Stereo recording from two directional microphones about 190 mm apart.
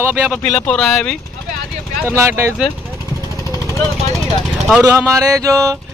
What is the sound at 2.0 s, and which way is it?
Speech, 15° right (ahead or behind).